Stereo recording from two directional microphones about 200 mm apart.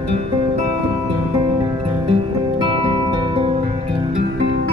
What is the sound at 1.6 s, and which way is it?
Music, 25° right (ahead or behind).